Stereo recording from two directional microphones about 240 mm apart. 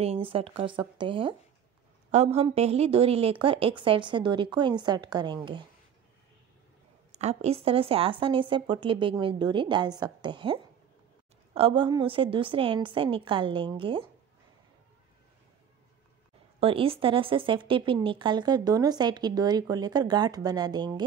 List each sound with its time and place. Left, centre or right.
0.0 s a woman's voice: right
7.1 s a woman's voice: right
16.5 s speech: right